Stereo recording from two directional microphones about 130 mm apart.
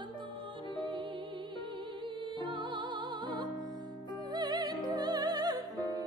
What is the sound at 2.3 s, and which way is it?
Music, 40° right (ahead or behind).